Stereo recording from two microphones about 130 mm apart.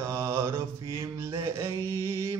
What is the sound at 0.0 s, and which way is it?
Mantra, 20° right (ahead or behind).